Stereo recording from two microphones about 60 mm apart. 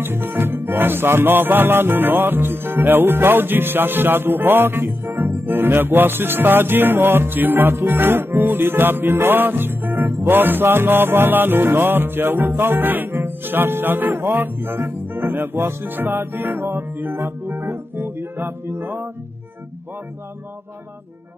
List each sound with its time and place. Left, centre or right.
0.0 s music: right